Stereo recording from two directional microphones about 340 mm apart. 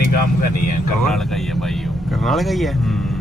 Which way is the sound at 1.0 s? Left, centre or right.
Centre.